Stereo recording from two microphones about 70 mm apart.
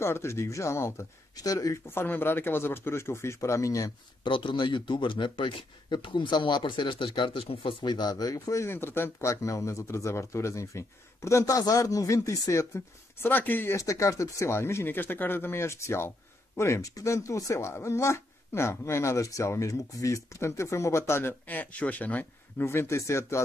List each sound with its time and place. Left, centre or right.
0.0 s speech: left
1.3 s speech: left
2.0 s speech: left
4.6 s speech: left
7.8 s speech: left
8.6 s speech: left
13.2 s speech: left
13.7 s speech: left
22.7 s speech: left